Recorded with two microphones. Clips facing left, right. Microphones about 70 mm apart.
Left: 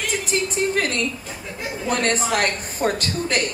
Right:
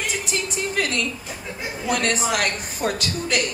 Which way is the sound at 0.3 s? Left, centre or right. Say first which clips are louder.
Left 5 dB; left.